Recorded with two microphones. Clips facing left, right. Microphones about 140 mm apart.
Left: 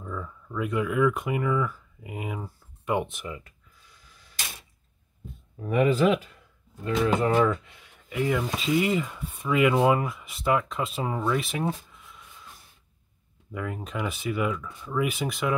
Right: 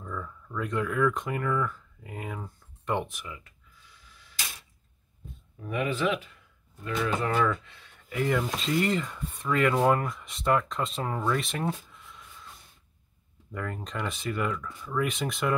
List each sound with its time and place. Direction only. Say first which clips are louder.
0.0 s speech: left 2 dB; 10° left (ahead or behind)
3.1 s speech: left 6 dB; 30° left (ahead or behind)
5.6 s speech: left 7 dB; 40° left (ahead or behind)
7.2 s speech: left 4 dB; 20° left (ahead or behind)
8.1 s speech: left 1 dB; 5° left (ahead or behind)
13.5 s speech: left 2 dB; 5° left (ahead or behind)